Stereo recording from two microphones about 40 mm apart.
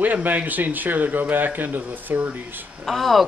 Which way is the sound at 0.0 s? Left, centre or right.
Right.